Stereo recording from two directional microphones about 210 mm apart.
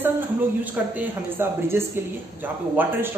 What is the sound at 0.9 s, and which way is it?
A man's voice, 10° right (ahead or behind).